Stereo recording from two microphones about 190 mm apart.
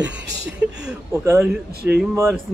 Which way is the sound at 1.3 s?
5° right (ahead or behind).